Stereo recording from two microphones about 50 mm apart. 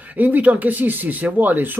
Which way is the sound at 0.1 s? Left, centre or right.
Right.